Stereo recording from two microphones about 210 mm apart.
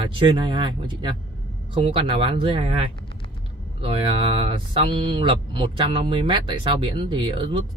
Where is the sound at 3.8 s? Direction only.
25° right (ahead or behind).